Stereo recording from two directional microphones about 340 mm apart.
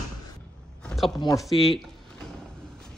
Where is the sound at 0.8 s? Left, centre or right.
Centre.